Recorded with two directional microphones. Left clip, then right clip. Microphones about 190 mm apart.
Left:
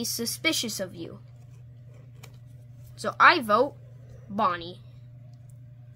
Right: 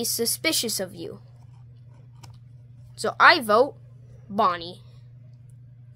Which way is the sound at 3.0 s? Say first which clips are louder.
Right 2 dB; 55° right (ahead or behind).